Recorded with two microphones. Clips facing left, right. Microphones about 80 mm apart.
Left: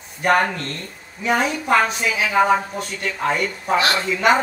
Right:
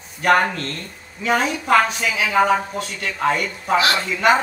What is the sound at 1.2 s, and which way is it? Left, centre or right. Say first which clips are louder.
Speech: even; centre.